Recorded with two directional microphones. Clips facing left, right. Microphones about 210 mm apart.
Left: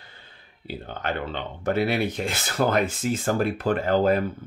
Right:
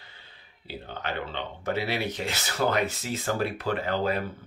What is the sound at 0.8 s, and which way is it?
Speech, 50° left (ahead or behind).